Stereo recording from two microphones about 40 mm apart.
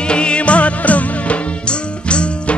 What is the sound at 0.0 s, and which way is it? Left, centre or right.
Music, left.